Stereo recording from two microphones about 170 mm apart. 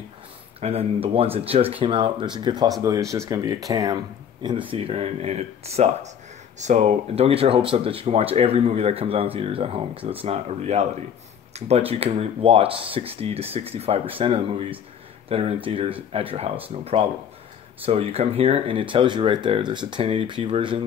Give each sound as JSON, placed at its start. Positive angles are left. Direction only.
{"t": 0.6, "sound": "speech", "side_deg": -35}
{"t": 4.6, "sound": "speech", "side_deg": -35}